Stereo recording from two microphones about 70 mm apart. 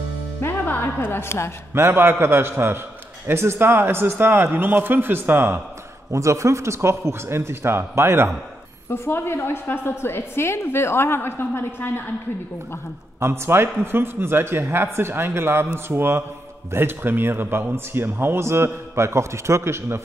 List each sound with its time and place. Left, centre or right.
0.4 s music: left
1.7 s a man's voice: right
6.1 s a man's voice: right
8.9 s a woman's voice: left
13.2 s a man's voice: right